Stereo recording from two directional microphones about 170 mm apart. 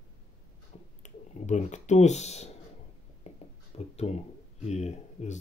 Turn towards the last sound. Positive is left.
turn(degrees=40)  # may be behind; listen again after turning